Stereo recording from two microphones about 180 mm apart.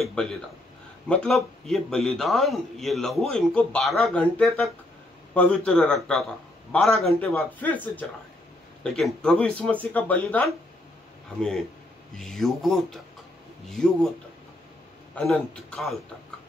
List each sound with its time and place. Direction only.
0.0 s a man's voice: 5° left (ahead or behind)
12.2 s a man's voice: centre (ahead or behind)
15.1 s a man's voice: 5° left (ahead or behind)